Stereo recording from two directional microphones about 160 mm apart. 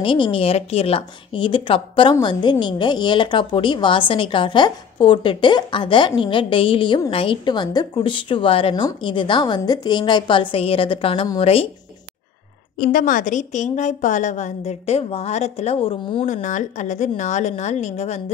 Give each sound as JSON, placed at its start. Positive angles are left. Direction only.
{"t": 0.0, "sound": "a woman's voice", "side_deg": 30}
{"t": 12.7, "sound": "a woman's voice", "side_deg": 60}
{"t": 16.3, "sound": "a woman's voice", "side_deg": 50}